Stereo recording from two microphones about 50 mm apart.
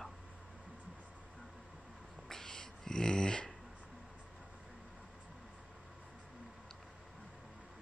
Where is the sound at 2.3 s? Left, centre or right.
Centre.